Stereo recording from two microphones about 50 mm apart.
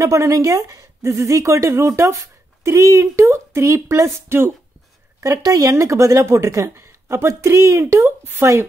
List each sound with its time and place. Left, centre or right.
0.0 s a woman's voice: right
5.2 s a woman's voice: right
6.7 s speech: right